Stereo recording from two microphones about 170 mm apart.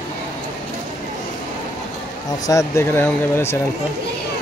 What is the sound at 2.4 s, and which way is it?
Speech, 15° left (ahead or behind).